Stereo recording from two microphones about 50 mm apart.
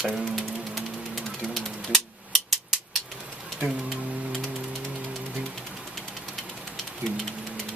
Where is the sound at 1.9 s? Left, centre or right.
Centre.